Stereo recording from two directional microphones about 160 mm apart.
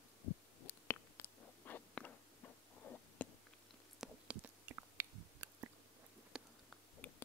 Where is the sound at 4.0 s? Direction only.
5° right (ahead or behind).